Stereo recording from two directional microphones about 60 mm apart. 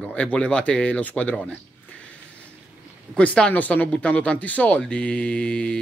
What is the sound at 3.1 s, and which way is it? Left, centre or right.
Speech, centre.